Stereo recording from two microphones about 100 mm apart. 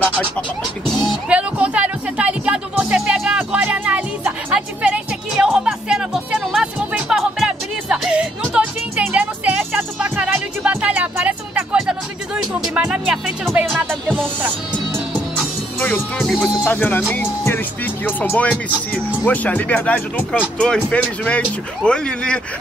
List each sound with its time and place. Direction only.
1.3 s music: 10° right (ahead or behind)
12.5 s speech: 5° right (ahead or behind)
15.8 s speech: 5° left (ahead or behind)
16.6 s speech: 20° left (ahead or behind)